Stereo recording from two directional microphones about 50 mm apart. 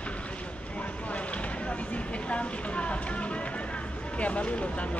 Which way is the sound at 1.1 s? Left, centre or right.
Left.